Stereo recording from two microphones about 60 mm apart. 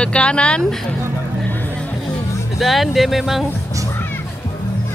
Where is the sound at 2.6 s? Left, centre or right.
Centre.